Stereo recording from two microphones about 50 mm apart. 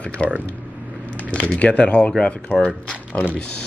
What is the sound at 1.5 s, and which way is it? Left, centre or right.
Speech, left.